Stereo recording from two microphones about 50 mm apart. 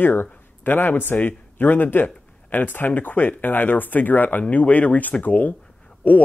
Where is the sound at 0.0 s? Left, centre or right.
Left.